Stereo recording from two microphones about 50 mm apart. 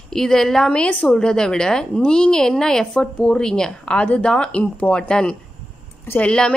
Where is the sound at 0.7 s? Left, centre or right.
Left.